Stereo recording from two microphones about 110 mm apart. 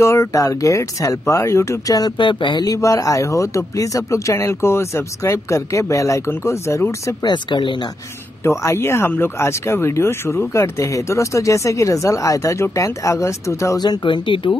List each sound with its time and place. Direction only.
0.0 s speech: 25° left (ahead or behind)
2.1 s speech: 45° left (ahead or behind); by 7.2 s 25° left (ahead or behind)
7.2 s speech: 45° left (ahead or behind)
8.5 s speech: 25° left (ahead or behind)
13.7 s speech: 40° left (ahead or behind)